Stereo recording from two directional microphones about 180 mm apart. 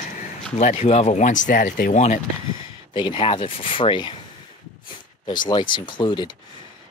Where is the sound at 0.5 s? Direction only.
40° left (ahead or behind).